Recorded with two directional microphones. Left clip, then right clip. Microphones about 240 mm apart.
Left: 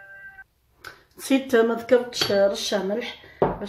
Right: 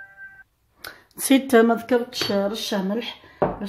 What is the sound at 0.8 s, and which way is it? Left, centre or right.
Speech, right.